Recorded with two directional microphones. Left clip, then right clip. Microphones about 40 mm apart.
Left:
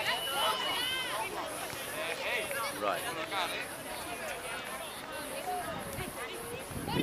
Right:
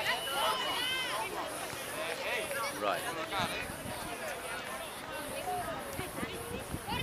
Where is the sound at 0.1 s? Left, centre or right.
Left.